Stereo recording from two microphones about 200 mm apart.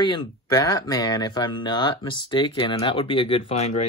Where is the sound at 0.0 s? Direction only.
20° left (ahead or behind).